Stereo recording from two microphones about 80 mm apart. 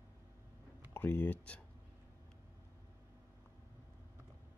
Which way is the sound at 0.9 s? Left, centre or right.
Left.